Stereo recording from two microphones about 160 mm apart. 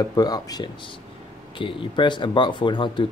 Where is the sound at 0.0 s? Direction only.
25° left (ahead or behind).